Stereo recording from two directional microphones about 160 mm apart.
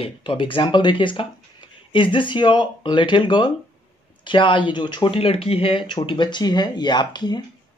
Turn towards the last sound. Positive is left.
turn(degrees=25)  # may be behind; listen again after turning